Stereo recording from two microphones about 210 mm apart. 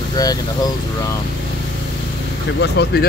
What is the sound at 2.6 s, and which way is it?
Speech, 50° left (ahead or behind).